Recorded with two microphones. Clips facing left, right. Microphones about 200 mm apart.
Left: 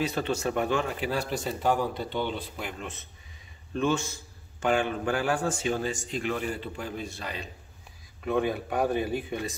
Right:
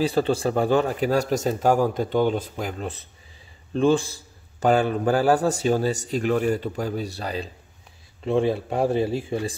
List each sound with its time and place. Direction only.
0.0 s a man's voice: 30° right (ahead or behind)